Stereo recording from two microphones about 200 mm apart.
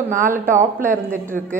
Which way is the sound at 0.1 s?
45° right (ahead or behind).